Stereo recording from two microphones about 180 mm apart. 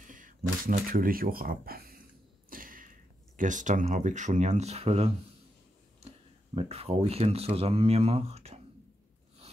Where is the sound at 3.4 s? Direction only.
45° right (ahead or behind).